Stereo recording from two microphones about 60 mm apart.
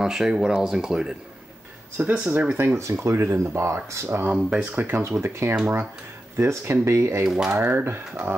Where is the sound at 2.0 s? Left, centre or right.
Right.